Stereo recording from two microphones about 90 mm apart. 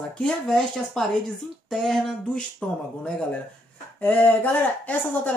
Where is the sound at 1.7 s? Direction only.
5° left (ahead or behind).